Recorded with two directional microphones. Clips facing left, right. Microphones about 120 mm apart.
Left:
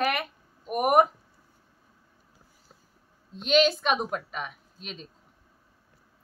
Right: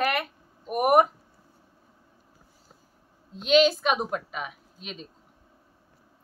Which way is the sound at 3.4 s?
Centre (ahead or behind).